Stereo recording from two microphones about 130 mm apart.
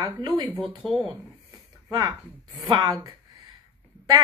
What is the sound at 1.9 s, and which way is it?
Speech, 30° right (ahead or behind).